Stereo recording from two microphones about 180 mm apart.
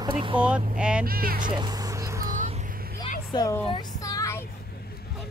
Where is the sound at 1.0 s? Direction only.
55° right (ahead or behind).